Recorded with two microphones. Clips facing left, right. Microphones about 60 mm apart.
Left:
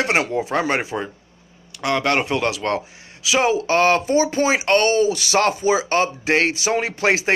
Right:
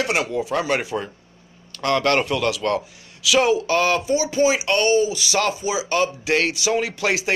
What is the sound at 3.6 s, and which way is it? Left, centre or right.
Speech, left.